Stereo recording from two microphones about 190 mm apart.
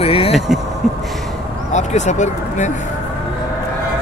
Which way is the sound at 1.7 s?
40° left (ahead or behind).